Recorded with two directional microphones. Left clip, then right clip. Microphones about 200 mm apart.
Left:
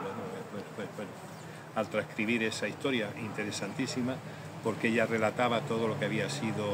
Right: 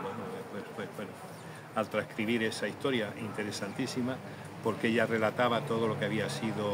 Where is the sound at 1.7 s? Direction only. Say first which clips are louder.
Even; 15° right (ahead or behind).